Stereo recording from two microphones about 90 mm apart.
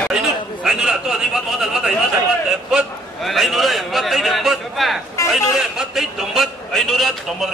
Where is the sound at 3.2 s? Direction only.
Centre (ahead or behind).